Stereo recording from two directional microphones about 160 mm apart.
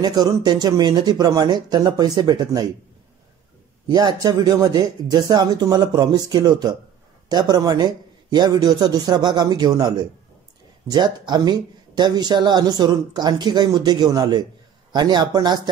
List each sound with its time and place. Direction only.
0.0 s speech: 25° right (ahead or behind)
3.9 s speech: 25° right (ahead or behind)